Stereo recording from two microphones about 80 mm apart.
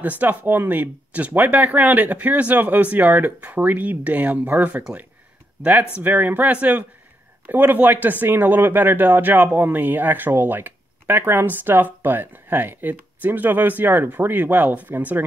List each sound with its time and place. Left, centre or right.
0.0 s speech: right